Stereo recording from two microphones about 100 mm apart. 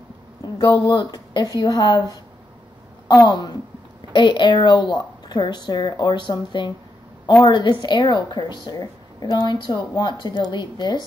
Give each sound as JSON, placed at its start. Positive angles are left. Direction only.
{"t": 0.6, "sound": "a woman's voice", "side_deg": 40}